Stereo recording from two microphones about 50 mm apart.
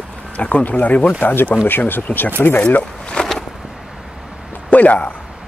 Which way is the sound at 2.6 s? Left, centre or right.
Left.